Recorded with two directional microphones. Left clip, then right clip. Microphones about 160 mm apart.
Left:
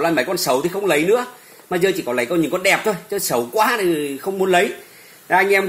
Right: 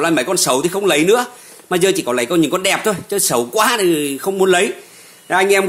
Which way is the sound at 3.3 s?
30° right (ahead or behind).